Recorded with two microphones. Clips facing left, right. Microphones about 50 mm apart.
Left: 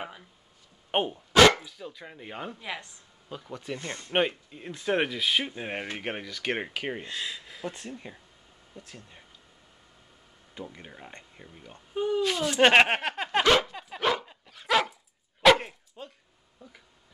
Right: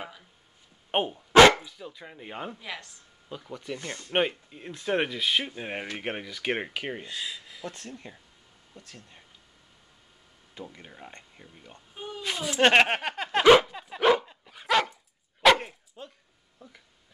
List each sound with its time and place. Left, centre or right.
0.9 s speech: centre
2.6 s speech: centre
3.3 s speech: centre
3.7 s speech: left
4.1 s speech: centre
7.6 s speech: centre
10.5 s speech: centre
11.9 s speech: left
12.2 s speech: centre
13.4 s a sound: centre
13.7 s dog: centre